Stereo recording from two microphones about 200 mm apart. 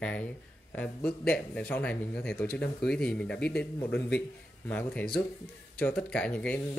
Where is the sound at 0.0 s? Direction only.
5° left (ahead or behind).